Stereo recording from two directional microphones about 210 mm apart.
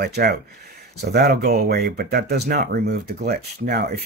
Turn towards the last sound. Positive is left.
turn(degrees=-50)  # may be behind; listen again after turning